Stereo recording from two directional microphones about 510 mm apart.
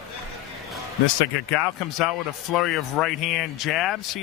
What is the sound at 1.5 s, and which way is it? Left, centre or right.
Speech, left.